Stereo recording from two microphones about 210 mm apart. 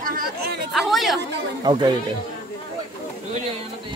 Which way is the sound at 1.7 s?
20° right (ahead or behind).